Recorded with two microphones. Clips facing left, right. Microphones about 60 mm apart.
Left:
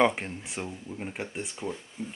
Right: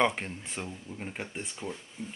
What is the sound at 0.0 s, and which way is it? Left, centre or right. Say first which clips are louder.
Speech: left 3 dB; centre.